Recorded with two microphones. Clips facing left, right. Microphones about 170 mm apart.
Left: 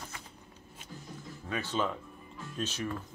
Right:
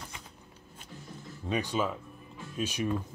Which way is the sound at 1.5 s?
15° right (ahead or behind).